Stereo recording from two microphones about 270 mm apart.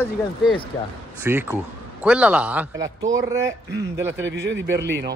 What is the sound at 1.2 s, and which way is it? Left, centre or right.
A man's voice, centre.